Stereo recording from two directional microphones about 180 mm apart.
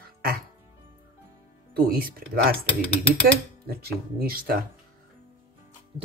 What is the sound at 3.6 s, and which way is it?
Speech, 55° right (ahead or behind).